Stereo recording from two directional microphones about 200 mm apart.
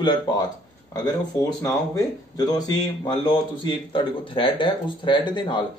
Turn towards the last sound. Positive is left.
turn(degrees=25)  # may be behind; listen again after turning